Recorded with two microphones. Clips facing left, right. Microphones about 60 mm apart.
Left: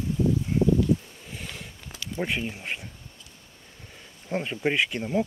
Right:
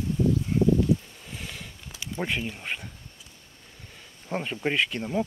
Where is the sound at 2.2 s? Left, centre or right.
Centre.